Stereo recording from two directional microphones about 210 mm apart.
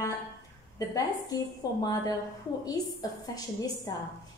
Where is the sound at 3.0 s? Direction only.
15° left (ahead or behind).